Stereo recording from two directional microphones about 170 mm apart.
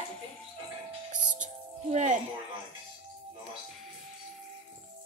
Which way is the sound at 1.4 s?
45° right (ahead or behind).